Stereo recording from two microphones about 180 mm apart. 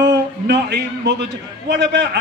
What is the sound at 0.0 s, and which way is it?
A man's voice, 75° right (ahead or behind).